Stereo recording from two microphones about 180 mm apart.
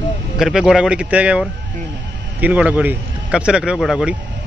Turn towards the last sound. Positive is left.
turn(degrees=0)  # may be behind; listen again after turning